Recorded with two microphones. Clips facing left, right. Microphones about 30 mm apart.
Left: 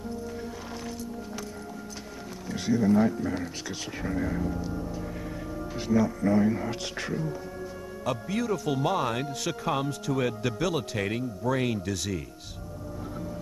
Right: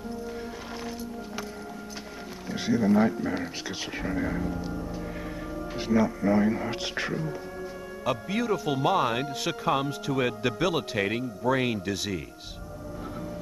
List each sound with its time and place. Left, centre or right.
2.5 s speech: centre
5.8 s speech: centre